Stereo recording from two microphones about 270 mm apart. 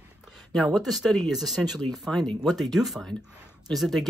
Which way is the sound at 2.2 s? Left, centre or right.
Centre.